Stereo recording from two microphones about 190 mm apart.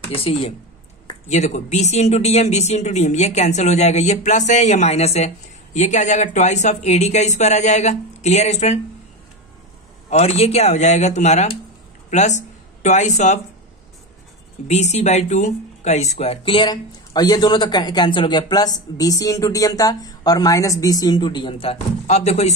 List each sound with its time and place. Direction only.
0.1 s speech: 30° left (ahead or behind)
10.0 s speech: 35° left (ahead or behind)
14.7 s speech: 35° left (ahead or behind)